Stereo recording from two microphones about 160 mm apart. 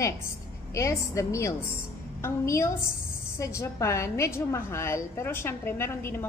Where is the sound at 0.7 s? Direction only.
20° left (ahead or behind).